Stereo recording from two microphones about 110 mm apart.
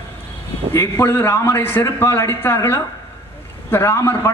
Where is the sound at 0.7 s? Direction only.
20° left (ahead or behind).